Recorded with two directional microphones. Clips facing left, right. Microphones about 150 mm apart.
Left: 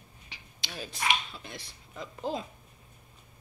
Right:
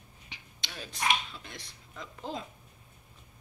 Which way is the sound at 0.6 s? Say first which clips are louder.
Left 1 dB; 5° left (ahead or behind).